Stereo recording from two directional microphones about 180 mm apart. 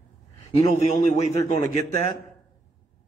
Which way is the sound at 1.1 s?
40° left (ahead or behind).